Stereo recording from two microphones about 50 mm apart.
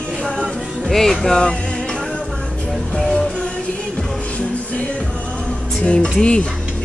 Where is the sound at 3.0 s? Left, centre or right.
Centre.